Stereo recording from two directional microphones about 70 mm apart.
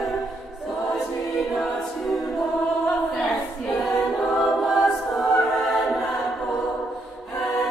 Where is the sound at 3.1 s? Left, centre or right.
Centre.